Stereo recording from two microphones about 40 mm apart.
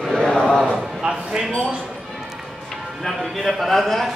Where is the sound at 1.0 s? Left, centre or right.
Centre.